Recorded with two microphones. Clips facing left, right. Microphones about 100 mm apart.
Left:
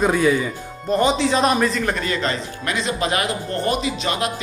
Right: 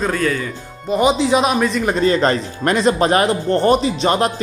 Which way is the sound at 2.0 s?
35° right (ahead or behind).